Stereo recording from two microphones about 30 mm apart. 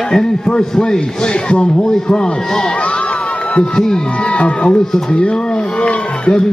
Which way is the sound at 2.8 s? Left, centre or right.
Left.